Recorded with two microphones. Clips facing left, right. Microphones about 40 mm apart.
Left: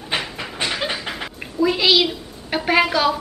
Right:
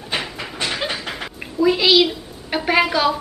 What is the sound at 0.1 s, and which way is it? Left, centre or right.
Train, centre.